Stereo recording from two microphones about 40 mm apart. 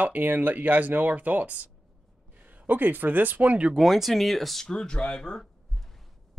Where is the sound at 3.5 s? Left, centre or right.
Right.